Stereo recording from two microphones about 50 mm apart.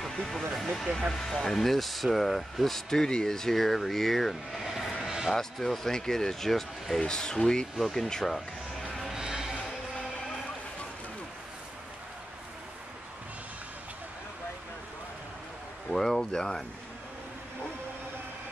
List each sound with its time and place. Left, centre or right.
0.2 s speech: centre
5.0 s vehicle: centre
5.3 s speech: centre
7.8 s speech: centre
9.1 s music: centre
15.9 s speech: centre